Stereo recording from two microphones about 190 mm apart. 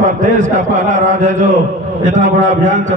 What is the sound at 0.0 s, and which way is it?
A man's voice, 40° right (ahead or behind).